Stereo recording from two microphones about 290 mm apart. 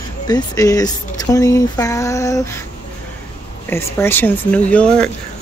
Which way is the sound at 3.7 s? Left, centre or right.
Centre.